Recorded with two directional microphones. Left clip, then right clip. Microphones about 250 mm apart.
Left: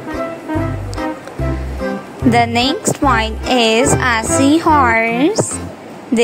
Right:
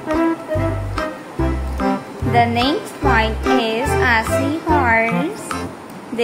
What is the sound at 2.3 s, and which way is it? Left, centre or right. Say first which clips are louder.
Music: left 1 dB; left.